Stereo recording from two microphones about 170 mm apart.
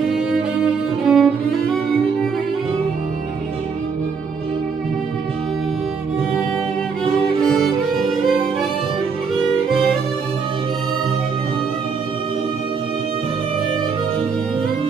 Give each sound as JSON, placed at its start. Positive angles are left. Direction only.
{"t": 1.0, "sound": "music", "side_deg": 0}
{"t": 7.4, "sound": "music", "side_deg": 0}